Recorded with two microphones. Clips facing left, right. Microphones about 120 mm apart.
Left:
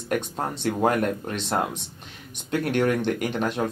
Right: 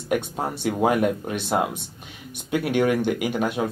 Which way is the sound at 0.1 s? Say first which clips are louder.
Right 2 dB; 5° right (ahead or behind).